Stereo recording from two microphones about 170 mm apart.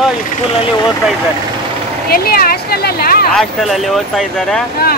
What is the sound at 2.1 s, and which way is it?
Speech, 60° left (ahead or behind).